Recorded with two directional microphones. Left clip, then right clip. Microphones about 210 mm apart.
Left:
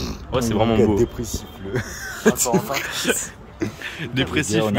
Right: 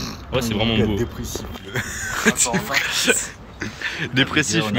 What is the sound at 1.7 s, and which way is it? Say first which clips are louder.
Speech: right 1 dB; 25° left (ahead or behind).